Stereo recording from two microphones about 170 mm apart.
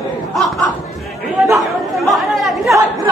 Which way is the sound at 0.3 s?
Centre (ahead or behind).